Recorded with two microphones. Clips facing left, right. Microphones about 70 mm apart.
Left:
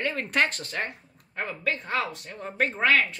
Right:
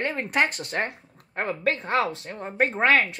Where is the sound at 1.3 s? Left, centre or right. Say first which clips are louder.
Right 4 dB; right.